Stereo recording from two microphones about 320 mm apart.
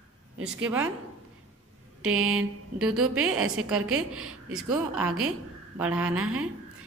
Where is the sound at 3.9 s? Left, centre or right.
Right.